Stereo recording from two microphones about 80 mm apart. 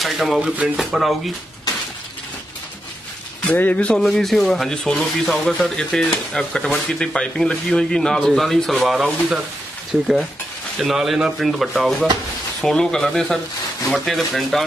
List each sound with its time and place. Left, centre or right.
0.0 s speech: centre
3.5 s speech: centre
4.1 s speech: centre
10.8 s speech: centre